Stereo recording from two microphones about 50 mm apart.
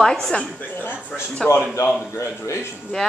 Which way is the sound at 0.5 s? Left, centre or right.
Left.